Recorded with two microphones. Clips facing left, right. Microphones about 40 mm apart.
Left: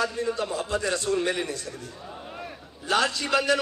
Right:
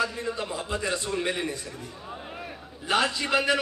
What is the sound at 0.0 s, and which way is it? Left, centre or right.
A man's voice, right.